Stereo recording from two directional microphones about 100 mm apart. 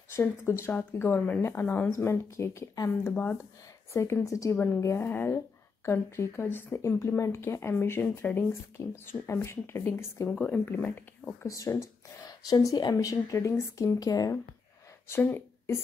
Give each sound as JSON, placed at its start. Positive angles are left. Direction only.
{"t": 0.1, "sound": "speech", "side_deg": 30}
{"t": 3.9, "sound": "speech", "side_deg": 30}
{"t": 11.4, "sound": "speech", "side_deg": 35}
{"t": 15.0, "sound": "speech", "side_deg": 20}